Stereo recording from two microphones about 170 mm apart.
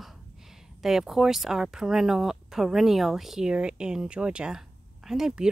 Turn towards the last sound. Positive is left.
turn(degrees=-5)  # may be behind; listen again after turning